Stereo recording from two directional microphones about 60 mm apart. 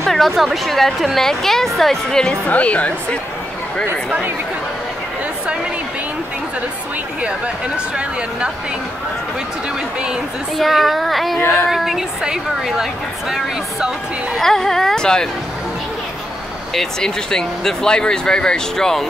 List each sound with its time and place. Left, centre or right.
0.0 s a sound: centre
0.4 s a woman's voice: centre
2.4 s a woman's voice: left
7.2 s speech: centre
10.6 s a woman's voice: centre
14.4 s speech: centre
16.7 s speech: centre